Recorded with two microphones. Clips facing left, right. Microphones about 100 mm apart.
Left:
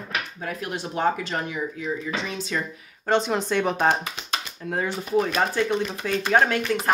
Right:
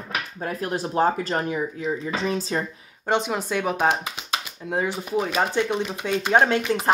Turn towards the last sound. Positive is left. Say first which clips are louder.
# right 1 dB
turn(degrees=-20)  # may be behind; listen again after turning